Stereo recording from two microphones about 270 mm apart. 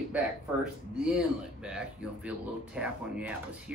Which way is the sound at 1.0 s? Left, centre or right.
Centre.